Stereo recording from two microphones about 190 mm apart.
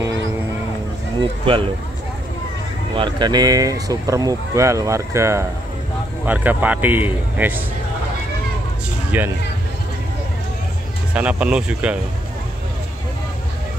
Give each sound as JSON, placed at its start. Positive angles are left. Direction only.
{"t": 1.4, "sound": "speech", "side_deg": -25}
{"t": 2.9, "sound": "speech", "side_deg": -25}
{"t": 9.1, "sound": "speech", "side_deg": -10}
{"t": 11.1, "sound": "speech", "side_deg": -5}